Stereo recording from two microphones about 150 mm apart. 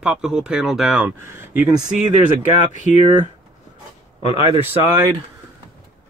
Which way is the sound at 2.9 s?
55° left (ahead or behind).